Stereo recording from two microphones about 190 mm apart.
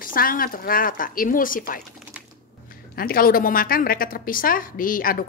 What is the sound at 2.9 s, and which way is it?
Speech, 50° left (ahead or behind).